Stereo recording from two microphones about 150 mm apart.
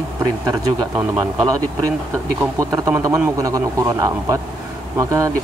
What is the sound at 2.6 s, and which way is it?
A man's voice, 20° right (ahead or behind).